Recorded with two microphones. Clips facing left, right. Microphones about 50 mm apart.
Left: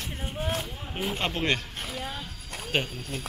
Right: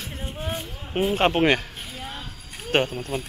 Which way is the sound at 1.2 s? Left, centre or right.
Right.